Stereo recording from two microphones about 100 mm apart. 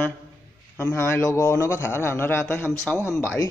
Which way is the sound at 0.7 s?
20° left (ahead or behind).